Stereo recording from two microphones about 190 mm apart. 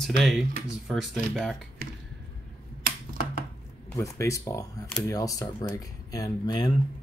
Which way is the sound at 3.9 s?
15° left (ahead or behind).